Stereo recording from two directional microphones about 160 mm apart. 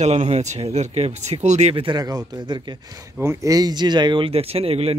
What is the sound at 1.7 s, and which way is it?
Speech, 30° right (ahead or behind).